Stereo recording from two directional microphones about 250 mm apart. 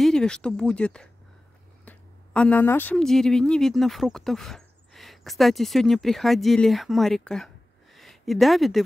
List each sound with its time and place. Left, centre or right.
0.0 s speech: centre